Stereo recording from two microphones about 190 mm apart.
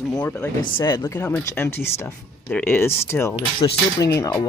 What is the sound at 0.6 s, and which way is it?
Speech, 25° left (ahead or behind).